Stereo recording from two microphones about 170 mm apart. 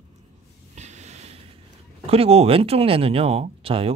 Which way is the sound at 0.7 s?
40° right (ahead or behind).